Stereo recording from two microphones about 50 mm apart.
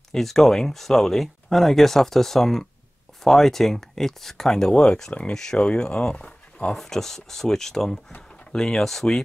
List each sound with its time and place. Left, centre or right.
0.1 s speech: centre; by 6.7 s left
6.7 s speech: centre